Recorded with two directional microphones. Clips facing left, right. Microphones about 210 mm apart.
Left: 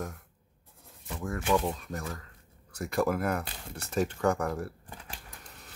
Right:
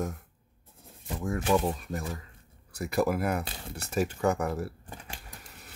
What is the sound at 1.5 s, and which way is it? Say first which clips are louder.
Speech: right 1 dB; 10° right (ahead or behind).